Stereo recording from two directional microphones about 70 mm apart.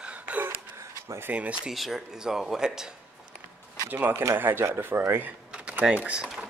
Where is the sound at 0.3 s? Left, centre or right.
Right.